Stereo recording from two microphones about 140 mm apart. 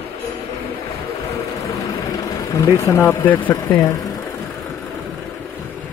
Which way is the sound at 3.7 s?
30° left (ahead or behind).